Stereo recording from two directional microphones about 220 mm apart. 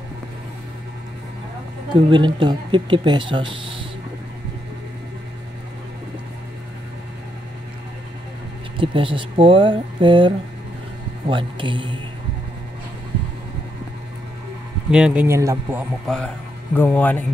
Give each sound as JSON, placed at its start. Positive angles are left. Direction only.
{"t": 2.0, "sound": "speech", "side_deg": -20}
{"t": 8.7, "sound": "speech", "side_deg": -25}
{"t": 14.9, "sound": "speech", "side_deg": -5}
{"t": 16.1, "sound": "speech", "side_deg": 0}